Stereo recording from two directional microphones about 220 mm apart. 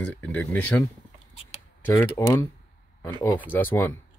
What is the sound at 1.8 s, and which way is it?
Speech, 10° left (ahead or behind).